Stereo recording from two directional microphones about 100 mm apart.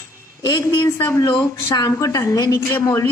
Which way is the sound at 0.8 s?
25° left (ahead or behind).